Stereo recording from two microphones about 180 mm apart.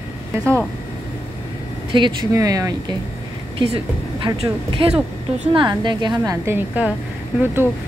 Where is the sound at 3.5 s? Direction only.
30° right (ahead or behind); by 7.0 s 10° right (ahead or behind).